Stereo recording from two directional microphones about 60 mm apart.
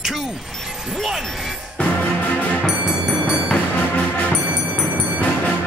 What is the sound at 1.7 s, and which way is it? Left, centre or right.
Music, left.